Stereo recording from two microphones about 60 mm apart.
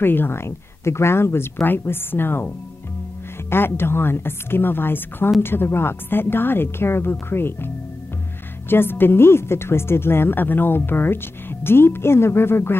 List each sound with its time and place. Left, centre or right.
0.0 s speech: left